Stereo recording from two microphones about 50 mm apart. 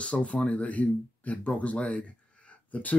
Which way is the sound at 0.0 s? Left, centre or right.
Left.